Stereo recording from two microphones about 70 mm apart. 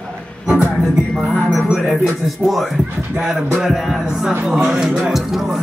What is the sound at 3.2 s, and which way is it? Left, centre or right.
Speech, centre.